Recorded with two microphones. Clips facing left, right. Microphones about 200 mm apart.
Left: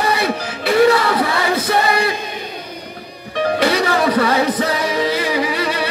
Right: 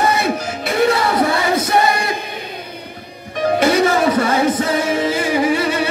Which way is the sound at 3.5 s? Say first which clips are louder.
Right 4 dB; 50° right (ahead or behind).